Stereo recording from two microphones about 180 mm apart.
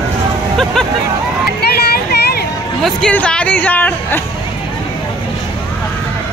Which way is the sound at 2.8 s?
5° left (ahead or behind).